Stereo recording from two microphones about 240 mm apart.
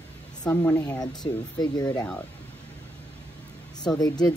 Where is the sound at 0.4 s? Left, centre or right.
Centre.